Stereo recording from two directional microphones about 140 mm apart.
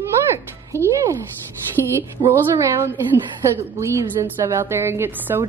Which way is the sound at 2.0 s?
20° right (ahead or behind).